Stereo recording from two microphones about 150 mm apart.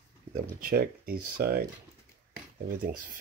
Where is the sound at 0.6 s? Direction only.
85° right.